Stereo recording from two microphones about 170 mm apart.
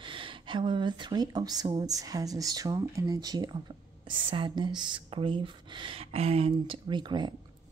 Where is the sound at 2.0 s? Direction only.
20° right (ahead or behind).